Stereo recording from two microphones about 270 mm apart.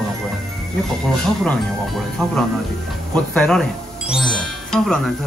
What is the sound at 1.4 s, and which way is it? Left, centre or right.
Speech, centre.